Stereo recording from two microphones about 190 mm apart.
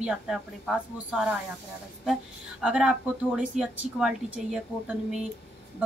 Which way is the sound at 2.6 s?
5° right (ahead or behind).